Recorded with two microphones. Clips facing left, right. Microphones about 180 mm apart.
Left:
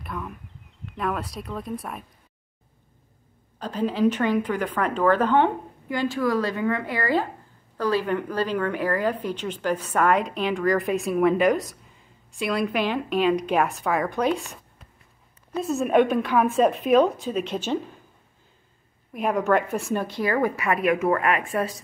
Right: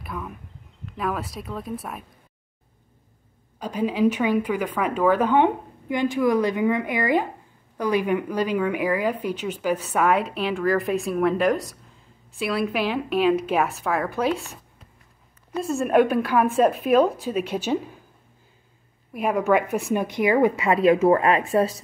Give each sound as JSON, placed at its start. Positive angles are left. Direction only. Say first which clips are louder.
{"t": 0.0, "sound": "a sound", "louder": "even", "side_deg": 0}
{"t": 0.8, "sound": "a woman's voice", "louder": "even", "side_deg": 0}
{"t": 3.5, "sound": "a woman's voice", "louder": "right 1 dB", "side_deg": -10}
{"t": 19.1, "sound": "a woman's voice", "louder": "right 1 dB", "side_deg": -5}